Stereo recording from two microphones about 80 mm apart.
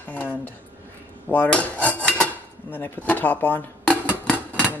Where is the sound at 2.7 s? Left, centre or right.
Left.